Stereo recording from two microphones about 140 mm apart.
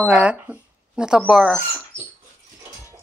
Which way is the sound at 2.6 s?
20° right (ahead or behind).